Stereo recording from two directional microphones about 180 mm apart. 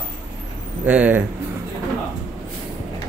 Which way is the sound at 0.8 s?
10° right (ahead or behind).